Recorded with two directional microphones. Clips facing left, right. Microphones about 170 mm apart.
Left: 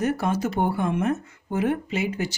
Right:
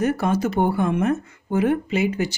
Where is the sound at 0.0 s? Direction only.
70° right (ahead or behind).